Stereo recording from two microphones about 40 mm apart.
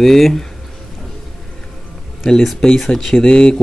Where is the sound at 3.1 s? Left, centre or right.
Left.